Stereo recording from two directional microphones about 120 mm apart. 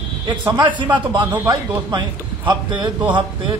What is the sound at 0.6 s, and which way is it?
Speech, 40° right (ahead or behind).